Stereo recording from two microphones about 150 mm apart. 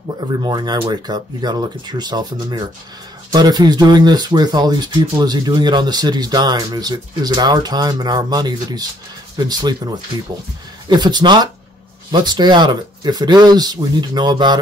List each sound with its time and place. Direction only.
0.4 s speech: 30° right (ahead or behind)